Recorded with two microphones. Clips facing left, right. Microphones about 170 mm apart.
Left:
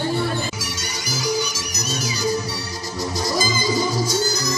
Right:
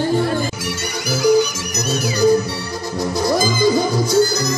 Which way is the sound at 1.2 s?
55° right (ahead or behind).